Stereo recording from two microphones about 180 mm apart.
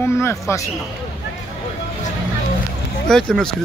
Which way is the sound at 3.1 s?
5° left (ahead or behind).